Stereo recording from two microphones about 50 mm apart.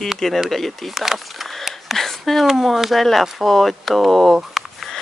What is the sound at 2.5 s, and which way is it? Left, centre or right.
Speech, centre.